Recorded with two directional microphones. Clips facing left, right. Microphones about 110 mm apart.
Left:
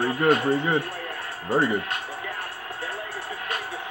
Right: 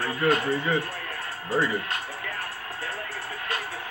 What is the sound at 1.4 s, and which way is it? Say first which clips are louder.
Speech: left 3 dB; 50° left (ahead or behind).